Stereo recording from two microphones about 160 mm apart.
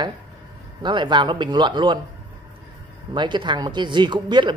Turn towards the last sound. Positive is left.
turn(degrees=-30)  # may be behind; listen again after turning